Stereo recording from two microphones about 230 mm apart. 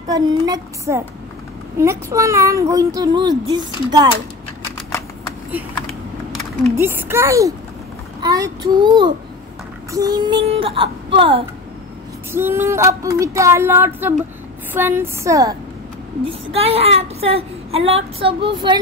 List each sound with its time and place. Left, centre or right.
0.1 s speech: centre
6.8 s a woman's voice: centre
12.3 s speech: centre
16.3 s a woman's voice: right